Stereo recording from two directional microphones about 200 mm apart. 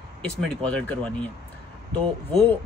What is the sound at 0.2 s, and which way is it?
A man's voice, 5° left (ahead or behind).